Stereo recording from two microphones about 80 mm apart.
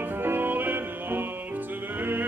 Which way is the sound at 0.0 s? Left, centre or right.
Right.